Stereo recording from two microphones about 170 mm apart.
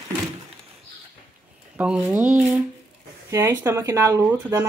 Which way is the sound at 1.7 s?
5° right (ahead or behind).